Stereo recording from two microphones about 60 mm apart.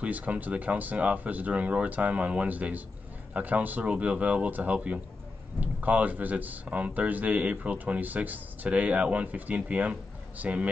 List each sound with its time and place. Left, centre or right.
0.0 s speech: right